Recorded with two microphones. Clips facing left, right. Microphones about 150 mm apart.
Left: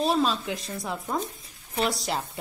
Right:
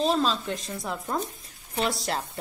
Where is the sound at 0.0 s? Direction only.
5° left (ahead or behind).